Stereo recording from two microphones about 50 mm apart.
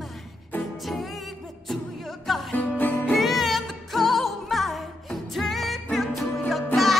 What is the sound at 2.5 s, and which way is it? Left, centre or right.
Music, left.